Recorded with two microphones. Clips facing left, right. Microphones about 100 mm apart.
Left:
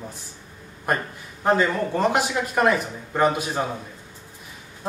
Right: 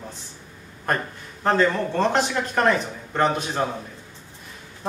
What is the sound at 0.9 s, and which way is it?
Speech, 10° left (ahead or behind).